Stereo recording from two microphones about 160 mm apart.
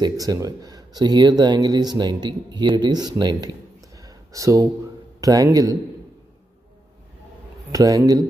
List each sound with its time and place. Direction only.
0.0 s speech: 20° right (ahead or behind)
4.0 s a sound: 20° right (ahead or behind)
5.2 s speech: 20° right (ahead or behind)
7.7 s speech: 20° right (ahead or behind)